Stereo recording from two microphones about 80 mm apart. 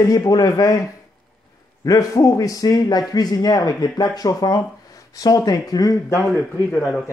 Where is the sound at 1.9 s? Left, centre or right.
Left.